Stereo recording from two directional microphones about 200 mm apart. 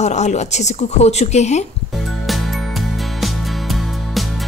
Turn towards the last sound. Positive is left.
turn(degrees=0)  # may be behind; listen again after turning